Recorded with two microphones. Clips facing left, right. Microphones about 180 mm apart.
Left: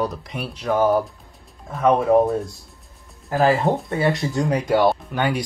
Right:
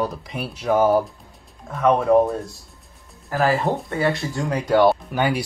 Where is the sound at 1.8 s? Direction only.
5° left (ahead or behind).